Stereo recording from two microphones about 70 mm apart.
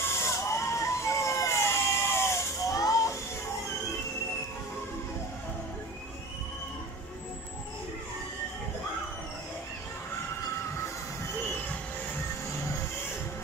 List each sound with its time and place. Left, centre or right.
0.1 s emergency vehicle: left
2.6 s hiss: left
12.5 s music: left